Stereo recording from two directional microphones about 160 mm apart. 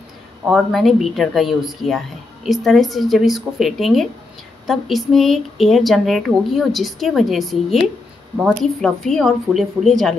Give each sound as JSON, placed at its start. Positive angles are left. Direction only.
{"t": 0.5, "sound": "speech", "side_deg": 0}